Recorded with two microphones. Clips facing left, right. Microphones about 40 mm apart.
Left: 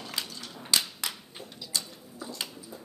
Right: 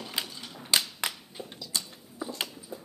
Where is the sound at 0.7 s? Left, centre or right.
Centre.